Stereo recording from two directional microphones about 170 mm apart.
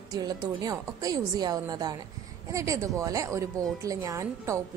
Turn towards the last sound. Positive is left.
turn(degrees=-15)  # may be behind; listen again after turning